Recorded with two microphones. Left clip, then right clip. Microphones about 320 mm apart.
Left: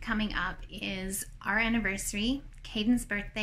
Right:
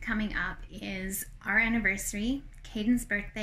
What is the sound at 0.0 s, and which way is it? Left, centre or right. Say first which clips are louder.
A woman's voice: even; centre.